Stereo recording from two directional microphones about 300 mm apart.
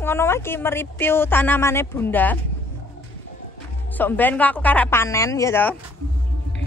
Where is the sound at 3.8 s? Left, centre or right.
Centre.